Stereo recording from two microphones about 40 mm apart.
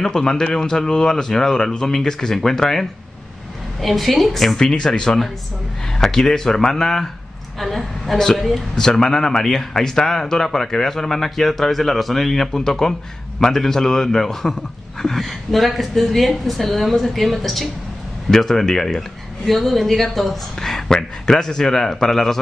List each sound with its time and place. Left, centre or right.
0.0 s a woman's voice: centre
4.6 s a woman's voice: centre
8.9 s a woman's voice: centre